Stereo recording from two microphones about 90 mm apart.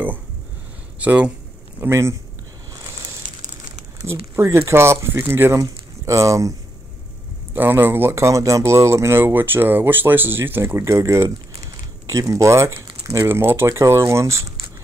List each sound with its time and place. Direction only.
0.9 s speech: 15° right (ahead or behind)
1.8 s speech: 30° right (ahead or behind)
4.4 s speech: 30° right (ahead or behind)
7.5 s speech: 25° right (ahead or behind)